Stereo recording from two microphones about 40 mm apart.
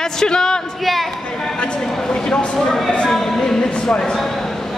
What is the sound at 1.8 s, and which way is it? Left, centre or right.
Speech, centre.